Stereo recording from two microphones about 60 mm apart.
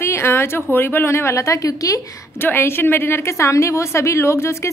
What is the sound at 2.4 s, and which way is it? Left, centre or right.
A woman's voice, left.